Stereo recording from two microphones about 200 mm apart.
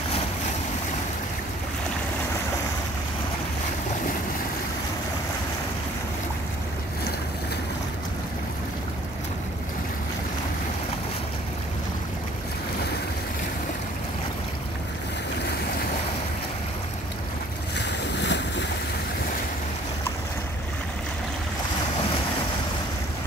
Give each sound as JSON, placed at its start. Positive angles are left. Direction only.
{"t": 17.7, "sound": "boat", "side_deg": 60}